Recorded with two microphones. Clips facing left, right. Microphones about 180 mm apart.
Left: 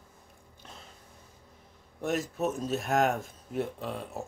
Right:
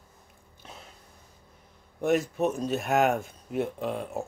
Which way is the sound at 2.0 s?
Centre (ahead or behind).